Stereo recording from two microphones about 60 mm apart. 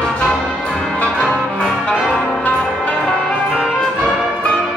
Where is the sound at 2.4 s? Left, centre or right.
Left.